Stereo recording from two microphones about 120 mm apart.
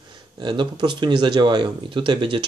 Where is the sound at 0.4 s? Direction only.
40° right (ahead or behind).